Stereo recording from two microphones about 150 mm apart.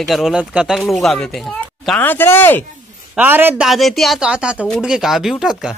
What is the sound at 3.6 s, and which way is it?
Speech, centre (ahead or behind).